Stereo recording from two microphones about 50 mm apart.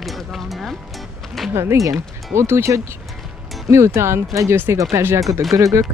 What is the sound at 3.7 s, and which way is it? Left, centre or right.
Speech, right.